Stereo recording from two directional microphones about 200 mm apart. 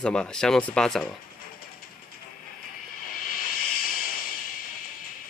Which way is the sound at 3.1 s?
45° left (ahead or behind).